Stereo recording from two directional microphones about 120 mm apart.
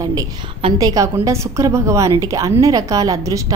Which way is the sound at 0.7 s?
30° right (ahead or behind).